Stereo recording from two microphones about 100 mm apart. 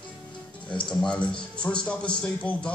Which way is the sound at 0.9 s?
10° left (ahead or behind).